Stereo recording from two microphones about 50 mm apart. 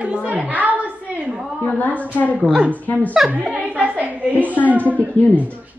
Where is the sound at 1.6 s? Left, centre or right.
Left.